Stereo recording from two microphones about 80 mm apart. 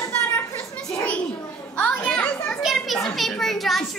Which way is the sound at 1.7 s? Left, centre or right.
Centre.